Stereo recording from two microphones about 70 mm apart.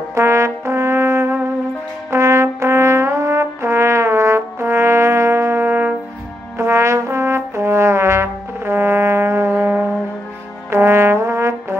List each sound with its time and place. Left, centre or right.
0.1 s brass instrument: right
6.6 s trombone: right
9.7 s music: right
10.7 s trombone: right